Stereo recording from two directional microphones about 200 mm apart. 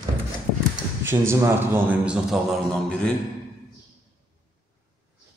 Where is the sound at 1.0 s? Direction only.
10° right (ahead or behind); by 3.1 s 5° left (ahead or behind).